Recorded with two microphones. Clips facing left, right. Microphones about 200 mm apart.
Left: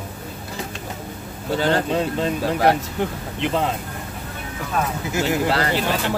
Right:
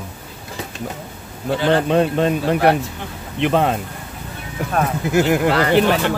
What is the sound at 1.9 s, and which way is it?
Speech, 65° right (ahead or behind).